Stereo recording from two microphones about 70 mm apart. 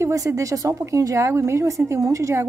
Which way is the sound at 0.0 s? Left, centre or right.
Right.